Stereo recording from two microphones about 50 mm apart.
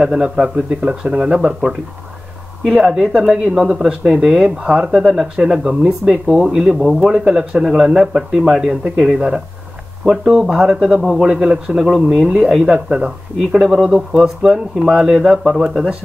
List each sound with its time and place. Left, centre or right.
0.0 s speech: centre
11.0 s a man's voice: centre
11.2 s a man's voice: centre
12.7 s speech: centre